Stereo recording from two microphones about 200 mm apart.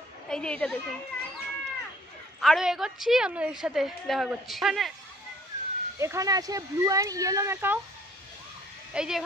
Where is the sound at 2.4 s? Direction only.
Centre (ahead or behind).